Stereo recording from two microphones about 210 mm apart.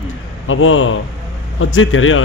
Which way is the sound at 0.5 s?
70° left (ahead or behind).